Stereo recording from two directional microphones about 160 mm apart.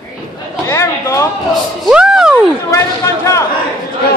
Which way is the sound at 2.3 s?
20° left (ahead or behind).